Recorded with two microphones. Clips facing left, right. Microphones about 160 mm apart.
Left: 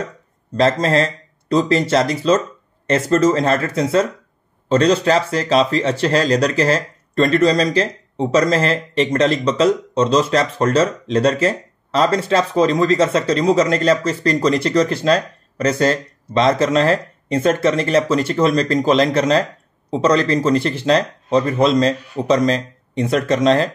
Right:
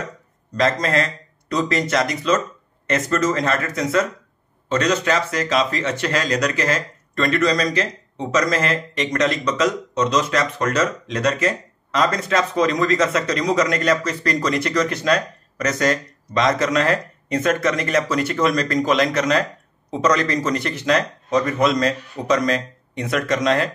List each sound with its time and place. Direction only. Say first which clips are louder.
0.6 s speech: left 4 dB; 30° left (ahead or behind)